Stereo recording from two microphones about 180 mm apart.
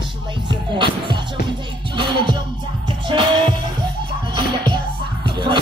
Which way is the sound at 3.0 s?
25° right (ahead or behind).